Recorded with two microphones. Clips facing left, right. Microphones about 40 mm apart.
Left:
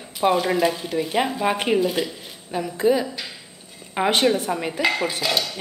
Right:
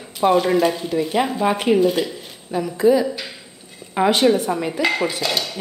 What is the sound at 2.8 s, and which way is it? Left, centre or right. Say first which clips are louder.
A woman's voice: right 4 dB; left.